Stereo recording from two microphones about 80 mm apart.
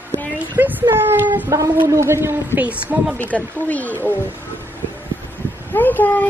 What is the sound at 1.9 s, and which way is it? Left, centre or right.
Speech, right.